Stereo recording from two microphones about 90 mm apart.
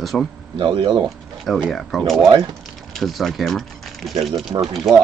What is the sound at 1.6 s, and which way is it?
Speech, 5° left (ahead or behind).